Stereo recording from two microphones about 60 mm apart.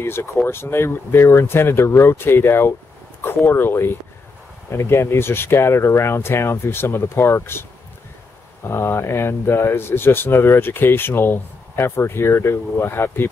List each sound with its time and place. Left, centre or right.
0.0 s speech: left
8.6 s speech: left